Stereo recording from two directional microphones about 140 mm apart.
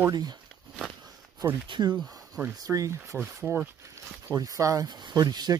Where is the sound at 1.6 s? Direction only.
35° right (ahead or behind).